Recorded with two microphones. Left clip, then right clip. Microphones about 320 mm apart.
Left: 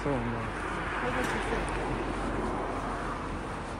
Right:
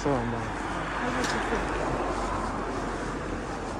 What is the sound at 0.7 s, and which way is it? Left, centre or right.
Vehicle, right.